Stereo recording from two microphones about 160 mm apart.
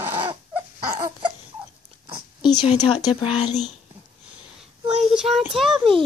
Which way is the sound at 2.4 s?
30° left (ahead or behind).